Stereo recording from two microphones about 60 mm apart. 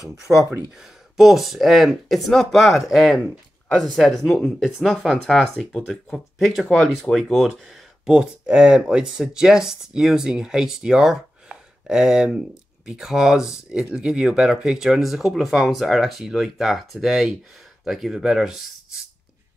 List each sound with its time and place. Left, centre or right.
0.3 s speech: right
1.1 s speech: centre
4.6 s speech: centre
5.3 s speech: centre
6.3 s speech: centre
8.0 s speech: centre